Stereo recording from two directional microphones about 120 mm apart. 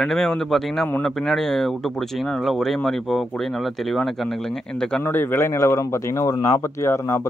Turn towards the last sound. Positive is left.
turn(degrees=25)  # may be behind; listen again after turning